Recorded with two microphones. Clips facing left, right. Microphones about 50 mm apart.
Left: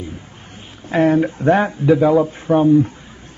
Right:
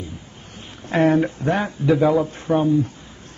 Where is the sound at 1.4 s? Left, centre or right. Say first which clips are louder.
Left 7 dB; left.